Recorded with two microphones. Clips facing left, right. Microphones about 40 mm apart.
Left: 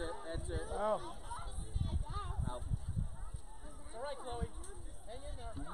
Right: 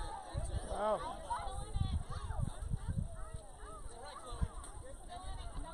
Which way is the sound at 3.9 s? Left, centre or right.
Centre.